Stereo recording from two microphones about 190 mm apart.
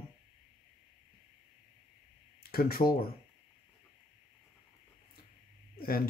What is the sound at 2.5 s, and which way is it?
Speech, 55° left (ahead or behind).